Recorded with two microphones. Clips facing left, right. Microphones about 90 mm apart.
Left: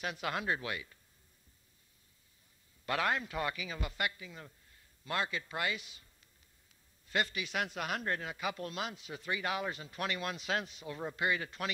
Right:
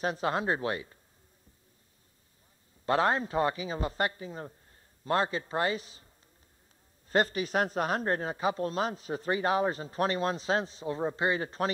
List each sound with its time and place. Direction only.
0.0 s speech: 35° right (ahead or behind)
2.8 s speech: 30° right (ahead or behind)
7.1 s speech: 40° right (ahead or behind)